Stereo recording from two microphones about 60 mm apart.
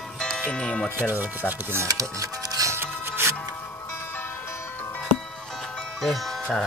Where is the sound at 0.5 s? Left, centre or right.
Centre.